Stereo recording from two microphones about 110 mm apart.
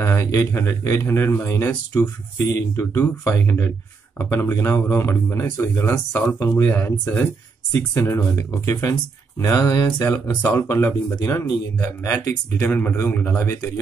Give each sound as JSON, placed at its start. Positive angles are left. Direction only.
{"t": 0.0, "sound": "speech", "side_deg": 25}
{"t": 9.4, "sound": "mantra", "side_deg": 30}
{"t": 10.0, "sound": "speech", "side_deg": 20}
{"t": 13.4, "sound": "speech", "side_deg": 25}